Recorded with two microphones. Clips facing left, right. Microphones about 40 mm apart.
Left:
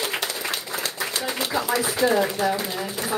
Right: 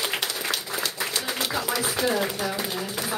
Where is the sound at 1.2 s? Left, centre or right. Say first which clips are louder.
Left 3 dB; centre.